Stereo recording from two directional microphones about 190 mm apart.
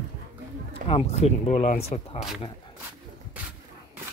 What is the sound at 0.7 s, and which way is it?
Speech, 30° left (ahead or behind).